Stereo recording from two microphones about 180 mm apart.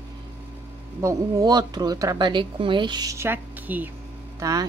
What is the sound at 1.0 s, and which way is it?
Speech, 20° right (ahead or behind).